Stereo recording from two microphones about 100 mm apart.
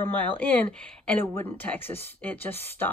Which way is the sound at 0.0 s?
15° left (ahead or behind).